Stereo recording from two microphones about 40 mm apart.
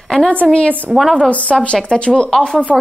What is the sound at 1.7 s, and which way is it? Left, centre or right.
Speech, centre.